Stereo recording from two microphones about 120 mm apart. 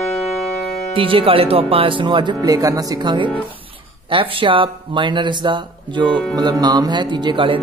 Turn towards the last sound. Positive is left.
turn(degrees=-45)  # may be behind; listen again after turning